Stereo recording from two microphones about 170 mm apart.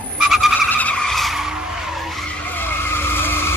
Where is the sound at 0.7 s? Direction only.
10° left (ahead or behind).